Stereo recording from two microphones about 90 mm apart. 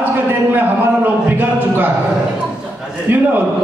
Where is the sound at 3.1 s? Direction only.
25° right (ahead or behind).